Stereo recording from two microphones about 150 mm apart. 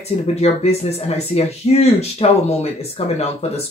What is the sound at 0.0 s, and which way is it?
Speech, 45° left (ahead or behind).